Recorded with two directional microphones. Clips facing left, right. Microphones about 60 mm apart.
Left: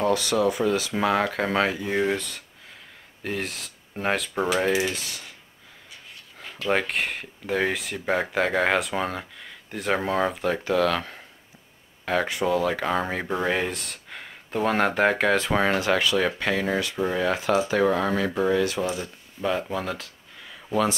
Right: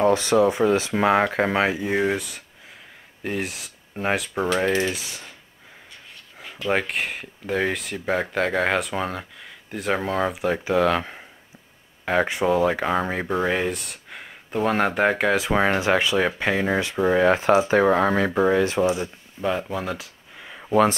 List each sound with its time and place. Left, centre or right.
0.0 s speech: right; by 4.5 s centre
6.4 s speech: centre
15.6 s speech: centre
19.4 s speech: centre
20.3 s a sound: right